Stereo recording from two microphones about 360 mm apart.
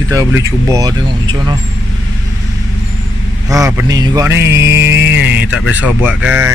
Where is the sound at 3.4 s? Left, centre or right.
Centre.